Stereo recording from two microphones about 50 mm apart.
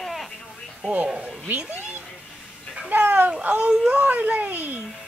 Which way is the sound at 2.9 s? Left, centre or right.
Right.